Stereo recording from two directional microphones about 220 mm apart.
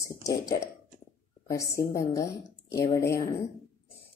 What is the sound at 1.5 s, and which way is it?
A woman's voice, 15° left (ahead or behind).